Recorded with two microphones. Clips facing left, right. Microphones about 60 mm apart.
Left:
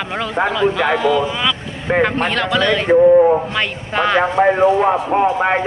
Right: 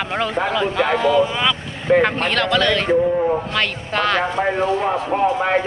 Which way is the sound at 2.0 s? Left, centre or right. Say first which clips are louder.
Left 5 dB; centre.